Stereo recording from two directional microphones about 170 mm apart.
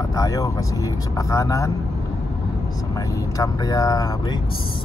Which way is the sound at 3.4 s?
20° left (ahead or behind).